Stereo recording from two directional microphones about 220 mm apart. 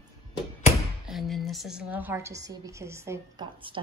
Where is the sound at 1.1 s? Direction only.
Centre (ahead or behind).